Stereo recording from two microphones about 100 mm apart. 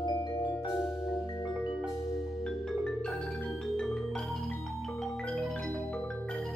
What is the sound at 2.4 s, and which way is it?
Music, 5° left (ahead or behind).